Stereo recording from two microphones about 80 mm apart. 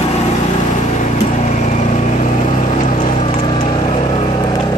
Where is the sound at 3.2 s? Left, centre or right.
Left.